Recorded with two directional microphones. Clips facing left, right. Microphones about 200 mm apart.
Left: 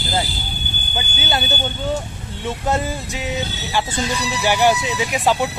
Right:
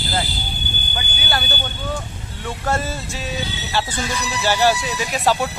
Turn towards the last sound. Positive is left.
turn(degrees=15)  # may be behind; listen again after turning